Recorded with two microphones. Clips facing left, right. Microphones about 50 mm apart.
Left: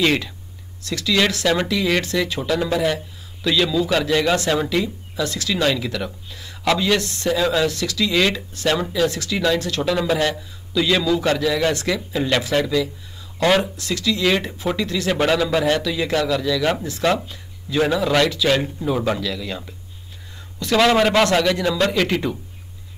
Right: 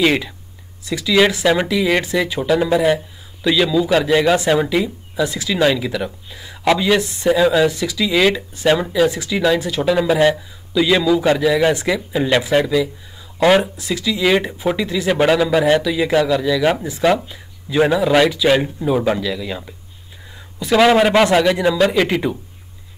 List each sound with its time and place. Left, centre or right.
0.0 s speech: centre
10.1 s speech: right
10.7 s a man's voice: centre